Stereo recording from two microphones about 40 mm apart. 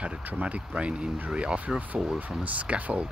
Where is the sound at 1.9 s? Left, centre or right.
Right.